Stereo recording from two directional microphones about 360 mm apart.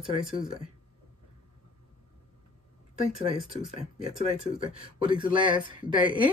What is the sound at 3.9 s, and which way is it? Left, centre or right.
Speech, centre.